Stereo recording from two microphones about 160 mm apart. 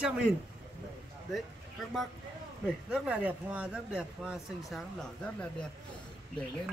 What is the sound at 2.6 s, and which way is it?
Speech, 5° right (ahead or behind).